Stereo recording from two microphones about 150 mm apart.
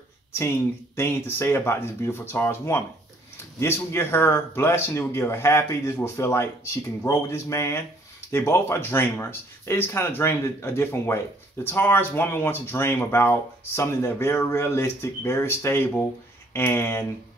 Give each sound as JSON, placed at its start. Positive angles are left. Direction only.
{"t": 0.3, "sound": "speech", "side_deg": 15}